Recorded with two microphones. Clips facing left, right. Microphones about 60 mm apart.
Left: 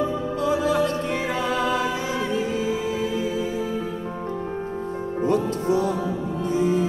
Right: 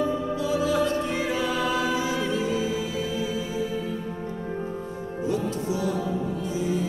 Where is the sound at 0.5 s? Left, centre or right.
Left.